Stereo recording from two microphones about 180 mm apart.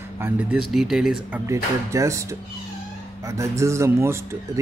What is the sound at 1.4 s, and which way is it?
Speech, 15° right (ahead or behind).